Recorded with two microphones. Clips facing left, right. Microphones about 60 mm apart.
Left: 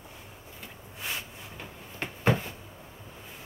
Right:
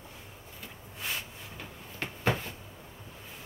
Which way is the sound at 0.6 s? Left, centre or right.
Centre.